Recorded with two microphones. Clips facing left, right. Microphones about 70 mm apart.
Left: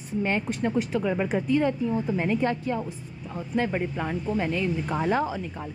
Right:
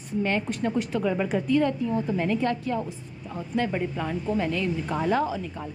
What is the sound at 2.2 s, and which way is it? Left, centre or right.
A woman's voice, left.